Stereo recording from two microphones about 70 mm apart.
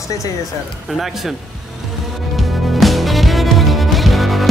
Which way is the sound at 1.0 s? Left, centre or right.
Centre.